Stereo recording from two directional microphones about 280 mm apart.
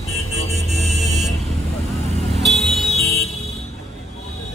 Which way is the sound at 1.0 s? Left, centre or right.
Centre.